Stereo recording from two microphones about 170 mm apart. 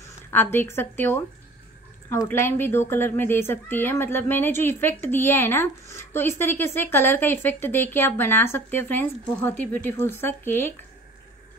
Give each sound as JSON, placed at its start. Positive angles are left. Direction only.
{"t": 0.0, "sound": "a woman's voice", "side_deg": 10}